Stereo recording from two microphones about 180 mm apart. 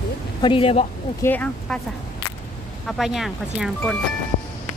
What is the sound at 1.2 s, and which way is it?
Speech, 10° left (ahead or behind).